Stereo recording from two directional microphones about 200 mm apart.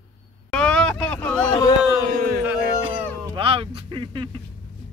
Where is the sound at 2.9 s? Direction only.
25° right (ahead or behind).